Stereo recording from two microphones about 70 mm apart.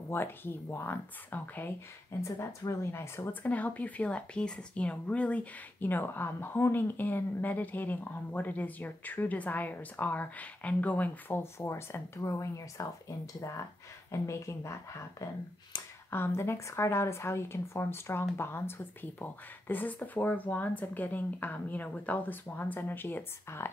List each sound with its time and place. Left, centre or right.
0.1 s a woman's voice: left
2.2 s a woman's voice: left
3.4 s speech: left
14.1 s a woman's voice: left
16.1 s a woman's voice: left